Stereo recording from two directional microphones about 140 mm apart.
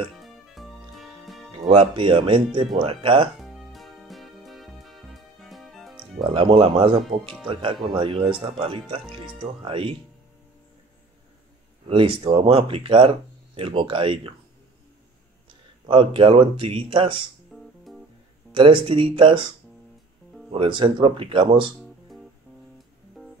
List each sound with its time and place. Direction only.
0.2 s music: centre (ahead or behind)
1.6 s speech: 40° right (ahead or behind)
3.3 s music: centre (ahead or behind)
6.3 s speech: 40° right (ahead or behind)
11.9 s speech: 40° right (ahead or behind)
15.4 s speech: 40° right (ahead or behind)
17.5 s music: centre (ahead or behind)
18.5 s speech: 40° right (ahead or behind)
20.5 s speech: 40° right (ahead or behind)
23.2 s music: centre (ahead or behind)